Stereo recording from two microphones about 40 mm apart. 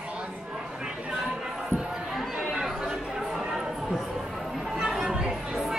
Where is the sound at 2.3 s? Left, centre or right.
Centre.